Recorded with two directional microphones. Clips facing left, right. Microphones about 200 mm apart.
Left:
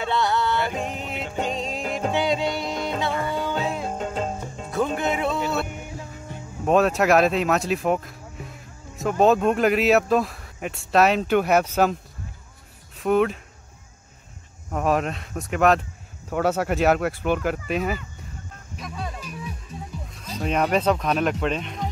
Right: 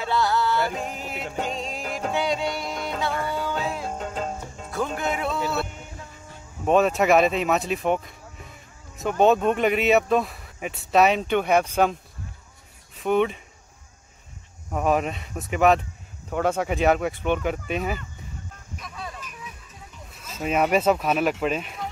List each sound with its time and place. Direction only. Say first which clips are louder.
0.0 s music: even; centre (ahead or behind)
6.6 s speech: even; centre (ahead or behind)
14.7 s speech: even; centre (ahead or behind)
18.9 s music: left 3 dB; 5° left (ahead or behind)
19.2 s music: left 7 dB; 35° left (ahead or behind)
20.3 s speech: right 1 dB; 5° right (ahead or behind)